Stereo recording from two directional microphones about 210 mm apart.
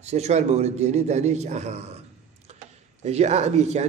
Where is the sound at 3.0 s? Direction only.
30° right (ahead or behind).